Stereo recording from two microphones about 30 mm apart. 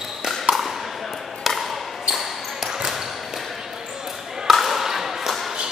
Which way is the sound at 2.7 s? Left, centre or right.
Centre.